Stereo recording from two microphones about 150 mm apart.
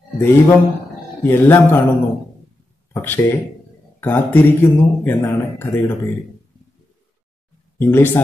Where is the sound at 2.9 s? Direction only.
15° left (ahead or behind).